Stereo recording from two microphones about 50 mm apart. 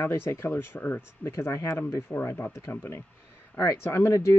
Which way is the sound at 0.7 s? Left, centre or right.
Left.